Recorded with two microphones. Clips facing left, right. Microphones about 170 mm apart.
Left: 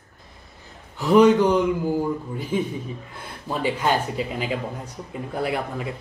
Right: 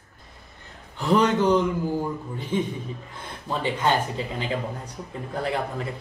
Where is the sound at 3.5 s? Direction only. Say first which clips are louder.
Left 1 dB; 10° left (ahead or behind).